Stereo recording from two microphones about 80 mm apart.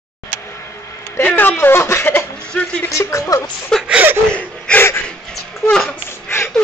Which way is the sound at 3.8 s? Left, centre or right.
Centre.